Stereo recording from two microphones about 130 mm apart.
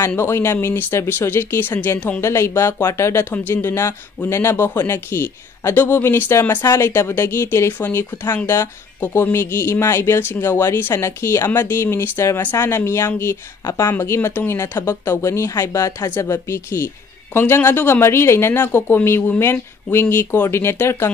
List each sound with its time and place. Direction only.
0.0 s speech: 20° left (ahead or behind)